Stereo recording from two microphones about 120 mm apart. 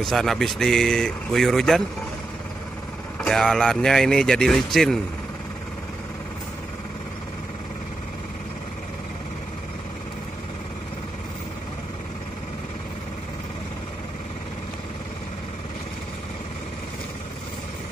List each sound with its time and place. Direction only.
0.0 s a man's voice: centre (ahead or behind)
3.2 s a man's voice: centre (ahead or behind)